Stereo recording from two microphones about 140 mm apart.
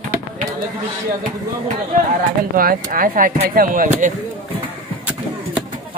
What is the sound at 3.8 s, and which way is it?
Speech, 65° right (ahead or behind).